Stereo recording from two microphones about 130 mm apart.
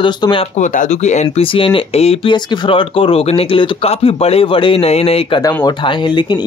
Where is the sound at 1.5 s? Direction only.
45° left (ahead or behind).